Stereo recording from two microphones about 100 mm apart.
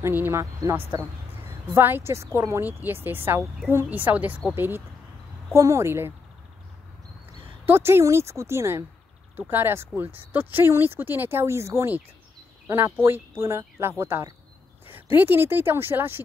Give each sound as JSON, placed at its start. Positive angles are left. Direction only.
{"t": 0.0, "sound": "speech", "side_deg": -25}
{"t": 1.7, "sound": "speech", "side_deg": -20}
{"t": 7.6, "sound": "speech", "side_deg": -25}